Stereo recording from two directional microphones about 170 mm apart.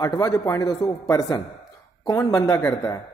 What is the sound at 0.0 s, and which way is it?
Speech, 20° left (ahead or behind).